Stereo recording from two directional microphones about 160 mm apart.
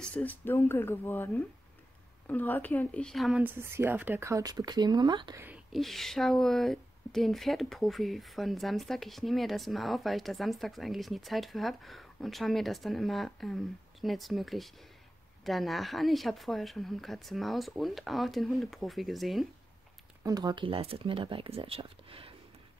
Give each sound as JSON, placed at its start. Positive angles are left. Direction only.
{"t": 0.0, "sound": "speech", "side_deg": 10}
{"t": 5.7, "sound": "a woman's voice", "side_deg": 0}
{"t": 20.2, "sound": "speech", "side_deg": -25}